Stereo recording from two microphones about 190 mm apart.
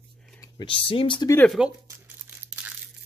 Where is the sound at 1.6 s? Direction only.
5° right (ahead or behind).